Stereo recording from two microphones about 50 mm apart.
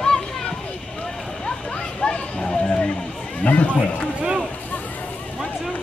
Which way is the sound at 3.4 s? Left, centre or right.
Left.